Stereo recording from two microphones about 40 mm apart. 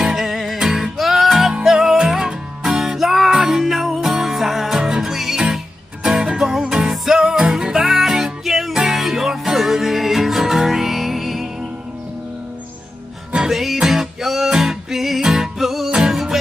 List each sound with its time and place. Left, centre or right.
0.0 s music: centre
7.9 s music: centre
13.4 s music: centre